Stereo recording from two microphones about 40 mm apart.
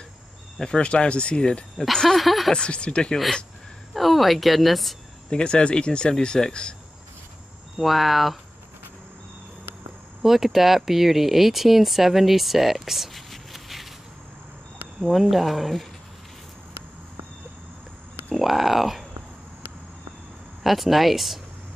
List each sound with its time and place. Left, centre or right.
0.7 s speech: left
1.8 s speech: centre
2.5 s speech: left
3.9 s speech: centre
5.3 s speech: left
7.7 s speech: centre
10.2 s speech: centre
15.1 s speech: centre
18.3 s speech: centre
20.6 s speech: centre